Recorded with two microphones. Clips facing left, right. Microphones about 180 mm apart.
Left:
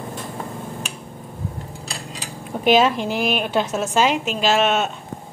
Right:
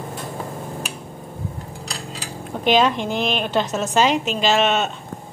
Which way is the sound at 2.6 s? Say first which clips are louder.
Left 1 dB; 5° left (ahead or behind).